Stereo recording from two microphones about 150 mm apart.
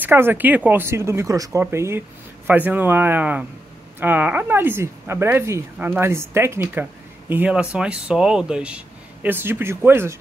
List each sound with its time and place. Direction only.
0.0 s speech: 15° right (ahead or behind)